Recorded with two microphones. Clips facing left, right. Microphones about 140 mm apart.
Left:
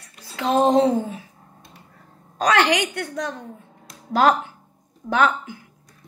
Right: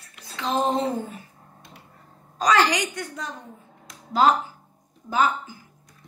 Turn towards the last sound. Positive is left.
turn(degrees=70)  # may be behind; listen again after turning